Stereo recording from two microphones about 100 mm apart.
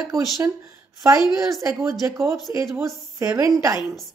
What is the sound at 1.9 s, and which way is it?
A woman's voice, 30° right (ahead or behind).